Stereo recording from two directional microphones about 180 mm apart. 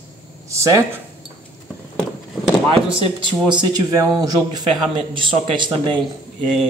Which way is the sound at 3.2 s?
25° right (ahead or behind).